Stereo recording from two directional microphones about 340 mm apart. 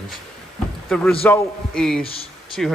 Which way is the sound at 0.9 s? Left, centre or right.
Centre.